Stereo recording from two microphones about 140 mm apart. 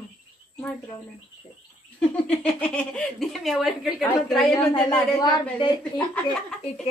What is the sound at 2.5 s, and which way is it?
A woman's voice, 5° left (ahead or behind).